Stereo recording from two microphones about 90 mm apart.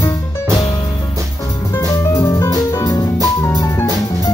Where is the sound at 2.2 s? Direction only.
40° left (ahead or behind).